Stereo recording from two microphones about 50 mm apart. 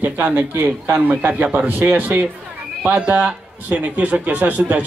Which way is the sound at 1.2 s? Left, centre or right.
Right.